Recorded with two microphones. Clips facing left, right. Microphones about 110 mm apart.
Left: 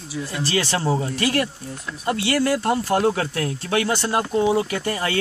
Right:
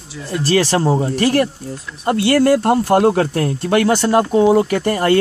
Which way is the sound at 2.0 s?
50° right (ahead or behind).